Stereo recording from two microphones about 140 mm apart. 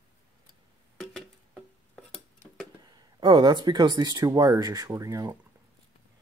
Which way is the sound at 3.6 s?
30° right (ahead or behind).